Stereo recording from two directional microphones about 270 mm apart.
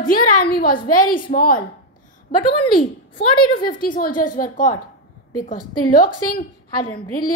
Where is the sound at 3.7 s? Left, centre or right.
Left.